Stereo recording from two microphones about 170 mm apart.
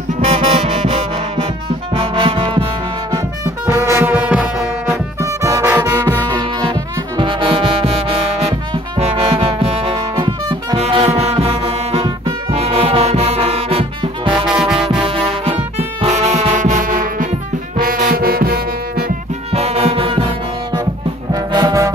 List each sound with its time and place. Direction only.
0.3 s music: 40° right (ahead or behind)
3.1 s music: 20° right (ahead or behind)
5.2 s music: 20° right (ahead or behind)
10.8 s music: 35° right (ahead or behind)
14.5 s music: 5° right (ahead or behind)
15.0 s brass instrument: 35° right (ahead or behind); by 19.1 s 60° right (ahead or behind)
19.5 s brass instrument: 35° right (ahead or behind)
21.3 s brass instrument: 20° right (ahead or behind)